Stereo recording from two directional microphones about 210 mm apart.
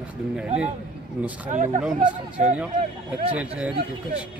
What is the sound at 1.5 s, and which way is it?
Speech, 35° right (ahead or behind).